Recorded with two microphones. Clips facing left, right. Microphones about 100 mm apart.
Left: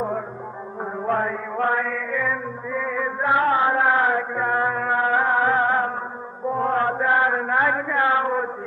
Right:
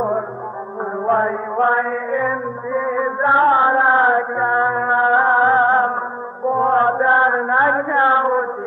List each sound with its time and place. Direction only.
1.0 s chant: 30° right (ahead or behind)
6.5 s mantra: 30° right (ahead or behind)